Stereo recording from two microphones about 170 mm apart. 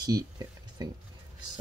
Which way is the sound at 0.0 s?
25° right (ahead or behind).